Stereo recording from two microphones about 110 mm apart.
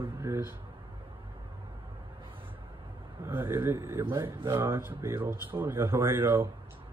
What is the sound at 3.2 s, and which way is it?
Speech, 20° right (ahead or behind).